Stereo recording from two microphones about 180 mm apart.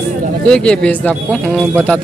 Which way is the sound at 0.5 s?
5° left (ahead or behind).